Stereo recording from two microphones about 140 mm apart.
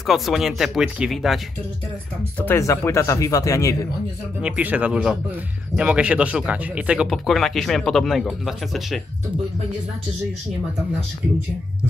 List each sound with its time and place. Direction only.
0.0 s speech: centre (ahead or behind)
2.3 s speech: 15° left (ahead or behind)
4.4 s speech: 10° right (ahead or behind)